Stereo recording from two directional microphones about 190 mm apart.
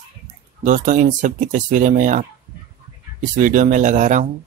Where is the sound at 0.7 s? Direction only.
40° right (ahead or behind).